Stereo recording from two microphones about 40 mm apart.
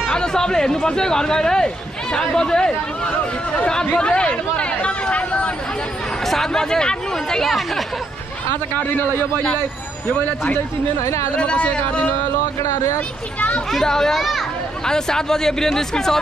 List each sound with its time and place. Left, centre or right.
0.1 s speech: centre
6.2 s speech: centre
7.4 s speech: centre
11.3 s speech: left
13.7 s speech: centre